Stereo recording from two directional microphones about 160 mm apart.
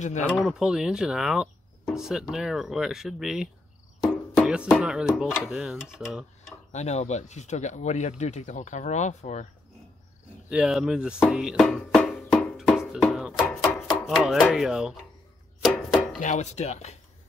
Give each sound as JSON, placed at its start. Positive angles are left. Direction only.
{"t": 0.0, "sound": "speech", "side_deg": 50}
{"t": 0.4, "sound": "speech", "side_deg": 0}
{"t": 4.4, "sound": "a sound", "side_deg": -5}
{"t": 4.7, "sound": "speech", "side_deg": -5}
{"t": 6.7, "sound": "speech", "side_deg": 45}
{"t": 10.5, "sound": "speech", "side_deg": -5}
{"t": 11.3, "sound": "music", "side_deg": -5}
{"t": 14.0, "sound": "speech", "side_deg": 0}
{"t": 15.6, "sound": "chopping", "side_deg": 0}
{"t": 16.2, "sound": "speech", "side_deg": 50}